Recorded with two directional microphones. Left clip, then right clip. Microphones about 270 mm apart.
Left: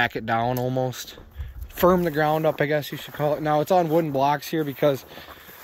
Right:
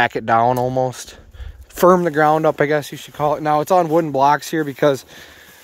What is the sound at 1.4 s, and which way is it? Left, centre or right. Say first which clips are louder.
Speech: right 6 dB; right.